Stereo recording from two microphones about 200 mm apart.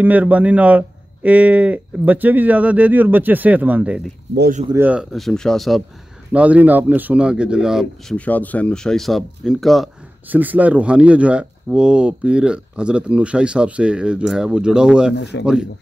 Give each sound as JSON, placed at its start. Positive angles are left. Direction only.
{"t": 0.0, "sound": "speech", "side_deg": -10}
{"t": 4.4, "sound": "speech", "side_deg": -40}
{"t": 4.6, "sound": "speech", "side_deg": -10}